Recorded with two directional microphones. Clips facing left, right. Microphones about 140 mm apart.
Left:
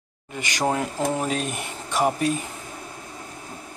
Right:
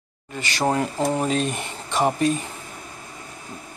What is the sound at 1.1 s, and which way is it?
Speech, 5° left (ahead or behind).